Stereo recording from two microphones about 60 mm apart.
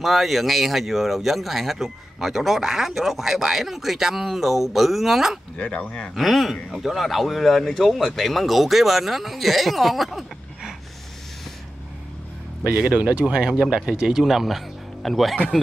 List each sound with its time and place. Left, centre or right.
0.0 s speech: centre
5.7 s speech: centre
6.1 s speech: centre
12.9 s speech: right; by 15.3 s centre